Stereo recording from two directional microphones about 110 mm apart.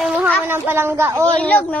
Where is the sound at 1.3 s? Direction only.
15° left (ahead or behind).